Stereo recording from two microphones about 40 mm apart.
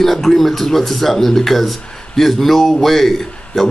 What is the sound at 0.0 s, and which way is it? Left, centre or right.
Speech, centre.